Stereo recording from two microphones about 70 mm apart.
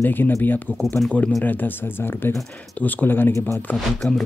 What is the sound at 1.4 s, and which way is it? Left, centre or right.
Speech, left.